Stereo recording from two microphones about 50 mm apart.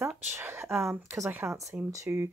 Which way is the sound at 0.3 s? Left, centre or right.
Right.